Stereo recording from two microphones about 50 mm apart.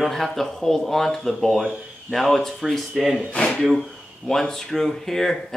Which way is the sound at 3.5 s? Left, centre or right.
Centre.